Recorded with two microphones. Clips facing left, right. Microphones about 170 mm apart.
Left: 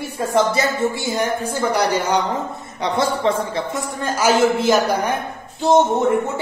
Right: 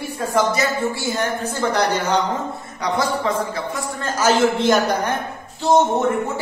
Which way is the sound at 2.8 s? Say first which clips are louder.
Left 2 dB; 25° left (ahead or behind).